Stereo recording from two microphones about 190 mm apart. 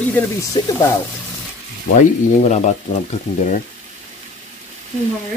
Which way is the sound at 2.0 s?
35° left (ahead or behind).